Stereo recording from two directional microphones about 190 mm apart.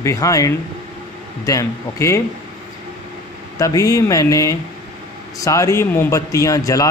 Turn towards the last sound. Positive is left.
turn(degrees=20)  # may be behind; listen again after turning